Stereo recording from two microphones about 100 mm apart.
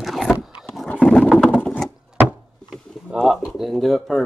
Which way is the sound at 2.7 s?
5° right (ahead or behind).